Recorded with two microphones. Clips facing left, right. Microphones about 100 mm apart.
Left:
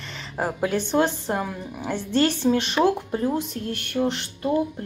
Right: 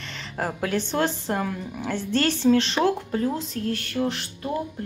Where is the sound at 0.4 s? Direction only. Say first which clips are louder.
Left 2 dB; 10° left (ahead or behind).